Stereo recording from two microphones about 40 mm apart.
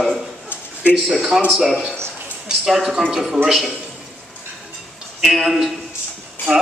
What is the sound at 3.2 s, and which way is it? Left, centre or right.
Speech, centre.